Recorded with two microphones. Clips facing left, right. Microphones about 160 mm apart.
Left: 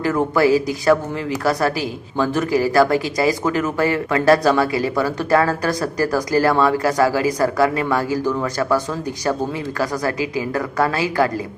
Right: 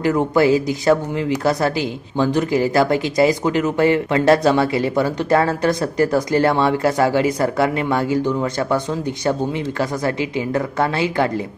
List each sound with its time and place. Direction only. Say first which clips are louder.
0.0 s speech: right 1 dB; 20° right (ahead or behind)